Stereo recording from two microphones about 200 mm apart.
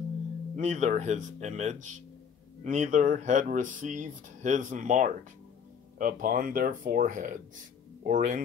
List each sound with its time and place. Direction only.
0.6 s speech: 35° right (ahead or behind)